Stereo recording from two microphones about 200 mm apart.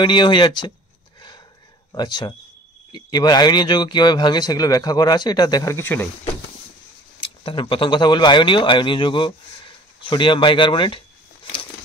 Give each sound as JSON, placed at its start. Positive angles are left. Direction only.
{"t": 0.0, "sound": "speech", "side_deg": 25}
{"t": 1.9, "sound": "speech", "side_deg": 20}
{"t": 7.2, "sound": "speech", "side_deg": 25}